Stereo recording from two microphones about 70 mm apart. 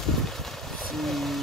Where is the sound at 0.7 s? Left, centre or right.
Centre.